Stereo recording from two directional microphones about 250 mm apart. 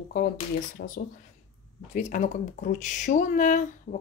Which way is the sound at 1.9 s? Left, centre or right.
Left.